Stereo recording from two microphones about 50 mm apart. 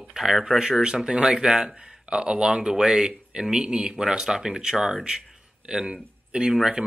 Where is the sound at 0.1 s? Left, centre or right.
Centre.